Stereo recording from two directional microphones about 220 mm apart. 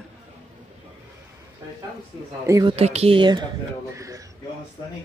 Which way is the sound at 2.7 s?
30° right (ahead or behind).